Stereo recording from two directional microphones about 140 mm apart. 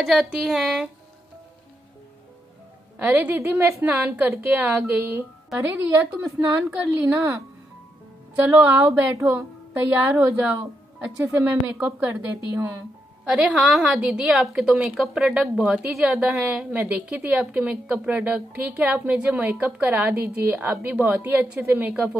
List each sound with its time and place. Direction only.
0.0 s a woman's voice: centre (ahead or behind)
3.0 s a woman's voice: 10° right (ahead or behind)
13.3 s a woman's voice: 5° right (ahead or behind)